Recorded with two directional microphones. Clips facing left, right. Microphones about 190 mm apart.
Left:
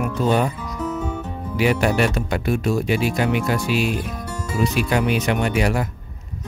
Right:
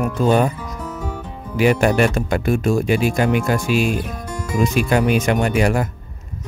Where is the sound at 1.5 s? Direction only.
50° right (ahead or behind).